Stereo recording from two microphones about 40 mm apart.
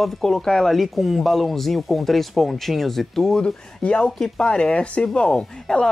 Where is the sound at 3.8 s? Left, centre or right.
Left.